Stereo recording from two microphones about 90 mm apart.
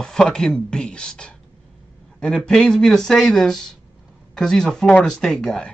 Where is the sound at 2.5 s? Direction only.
5° left (ahead or behind).